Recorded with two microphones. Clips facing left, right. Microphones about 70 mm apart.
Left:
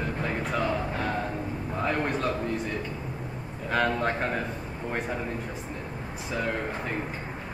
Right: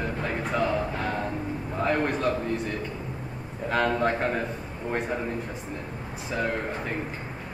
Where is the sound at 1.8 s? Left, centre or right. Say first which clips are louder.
Right 2 dB; centre.